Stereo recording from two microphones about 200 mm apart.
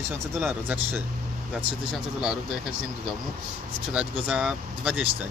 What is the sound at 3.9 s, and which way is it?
Speech, 5° right (ahead or behind).